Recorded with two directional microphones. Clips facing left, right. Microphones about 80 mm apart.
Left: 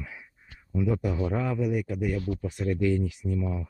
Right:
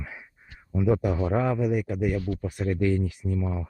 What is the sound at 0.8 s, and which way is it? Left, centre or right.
Speech, right.